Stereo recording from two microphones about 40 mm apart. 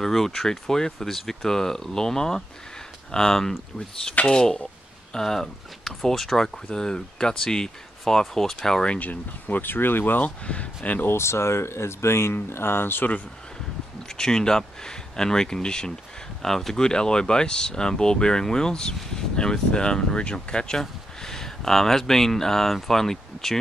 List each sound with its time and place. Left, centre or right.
0.0 s speech: centre
6.7 s speech: centre
8.0 s speech: centre
9.0 s speech: left
10.2 s speech: left
11.1 s speech: left
14.1 s speech: centre
16.4 s speech: centre
16.8 s speech: centre